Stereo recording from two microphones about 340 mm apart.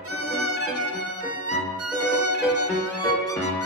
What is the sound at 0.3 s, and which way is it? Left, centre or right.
Music, right.